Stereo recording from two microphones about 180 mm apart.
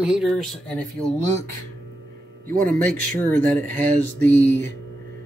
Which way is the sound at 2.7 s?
10° left (ahead or behind).